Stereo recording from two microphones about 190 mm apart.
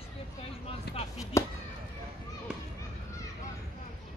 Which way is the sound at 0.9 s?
60° left (ahead or behind).